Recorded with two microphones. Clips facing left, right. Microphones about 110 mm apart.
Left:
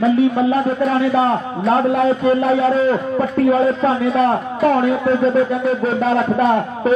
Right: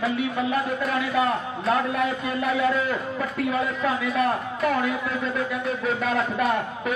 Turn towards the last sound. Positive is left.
turn(degrees=35)  # may be behind; listen again after turning